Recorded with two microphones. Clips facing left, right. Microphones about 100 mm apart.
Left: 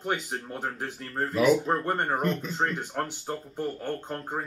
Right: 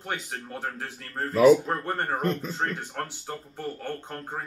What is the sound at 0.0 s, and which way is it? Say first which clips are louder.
Speech: left 3 dB; 15° left (ahead or behind).